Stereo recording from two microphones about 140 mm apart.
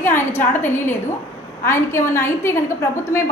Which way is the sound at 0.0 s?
15° left (ahead or behind).